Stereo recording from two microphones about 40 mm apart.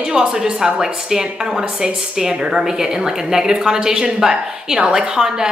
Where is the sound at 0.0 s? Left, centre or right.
Right.